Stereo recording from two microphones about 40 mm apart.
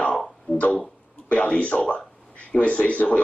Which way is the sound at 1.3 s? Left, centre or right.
Left.